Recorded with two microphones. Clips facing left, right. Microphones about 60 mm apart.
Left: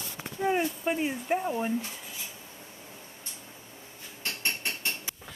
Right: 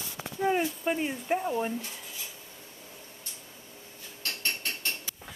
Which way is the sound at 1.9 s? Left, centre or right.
Centre.